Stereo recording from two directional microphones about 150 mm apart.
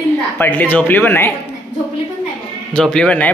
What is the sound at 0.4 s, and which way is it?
Speech, 10° left (ahead or behind).